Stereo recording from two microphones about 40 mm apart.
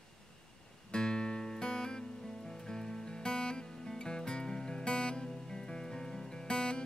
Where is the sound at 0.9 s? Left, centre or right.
Centre.